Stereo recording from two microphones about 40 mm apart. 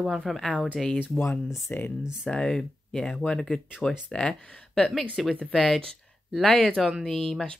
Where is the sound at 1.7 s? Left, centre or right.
Left.